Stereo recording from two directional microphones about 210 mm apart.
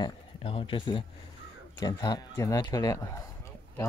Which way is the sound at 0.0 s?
25° left (ahead or behind).